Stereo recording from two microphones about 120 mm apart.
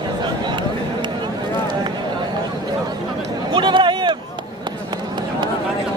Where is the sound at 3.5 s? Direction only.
40° right (ahead or behind).